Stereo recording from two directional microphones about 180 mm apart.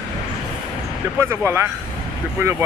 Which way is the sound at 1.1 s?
15° right (ahead or behind).